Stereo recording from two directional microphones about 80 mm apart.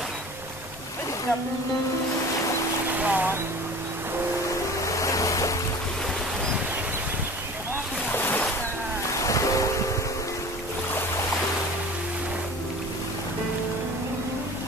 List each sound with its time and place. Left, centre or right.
3.0 s speech: right
4.8 s waves: left
8.1 s a sound: left
9.2 s ocean: left